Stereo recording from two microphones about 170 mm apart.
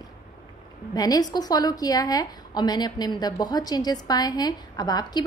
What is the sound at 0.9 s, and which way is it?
A woman's voice, 20° left (ahead or behind).